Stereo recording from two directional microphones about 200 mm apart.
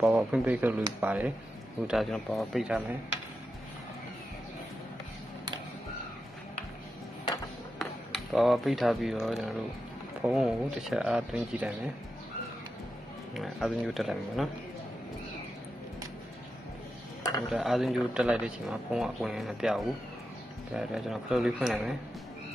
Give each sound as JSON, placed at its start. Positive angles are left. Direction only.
{"t": 0.0, "sound": "speech", "side_deg": -5}
{"t": 7.8, "sound": "speech", "side_deg": 0}
{"t": 13.3, "sound": "speech", "side_deg": 0}
{"t": 17.5, "sound": "speech", "side_deg": 0}